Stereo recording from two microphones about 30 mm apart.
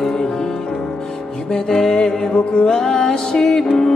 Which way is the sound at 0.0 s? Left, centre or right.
Left.